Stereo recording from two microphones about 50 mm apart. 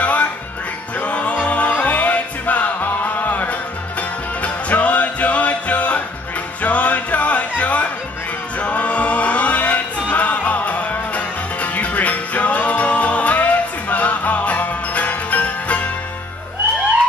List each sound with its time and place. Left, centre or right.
0.0 s music: left